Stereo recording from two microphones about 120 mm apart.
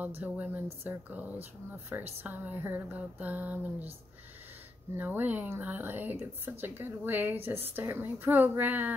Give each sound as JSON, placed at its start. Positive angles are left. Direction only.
{"t": 0.2, "sound": "speech", "side_deg": -10}
{"t": 4.9, "sound": "speech", "side_deg": -15}